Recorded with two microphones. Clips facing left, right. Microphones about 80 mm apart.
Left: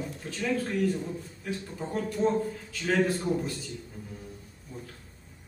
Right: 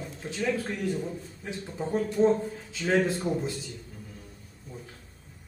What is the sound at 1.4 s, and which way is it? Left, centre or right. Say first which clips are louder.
A man's voice: right 1 dB; right.